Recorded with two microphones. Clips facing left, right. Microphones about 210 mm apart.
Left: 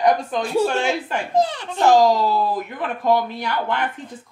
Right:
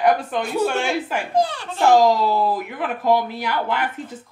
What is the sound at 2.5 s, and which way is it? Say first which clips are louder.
Speech: even; 5° right (ahead or behind).